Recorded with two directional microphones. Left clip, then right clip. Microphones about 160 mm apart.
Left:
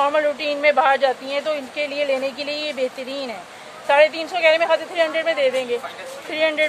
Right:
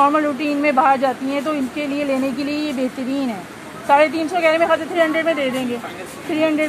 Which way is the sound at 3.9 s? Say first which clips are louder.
Right 1 dB; 30° left (ahead or behind).